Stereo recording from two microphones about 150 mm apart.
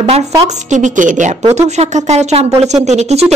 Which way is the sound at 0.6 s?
55° right (ahead or behind).